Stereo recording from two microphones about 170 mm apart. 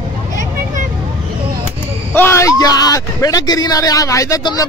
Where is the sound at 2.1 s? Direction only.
15° left (ahead or behind).